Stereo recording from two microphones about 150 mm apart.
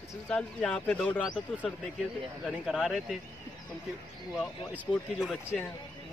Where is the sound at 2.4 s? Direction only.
5° right (ahead or behind).